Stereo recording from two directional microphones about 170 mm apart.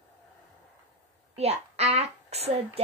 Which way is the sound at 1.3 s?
40° right (ahead or behind).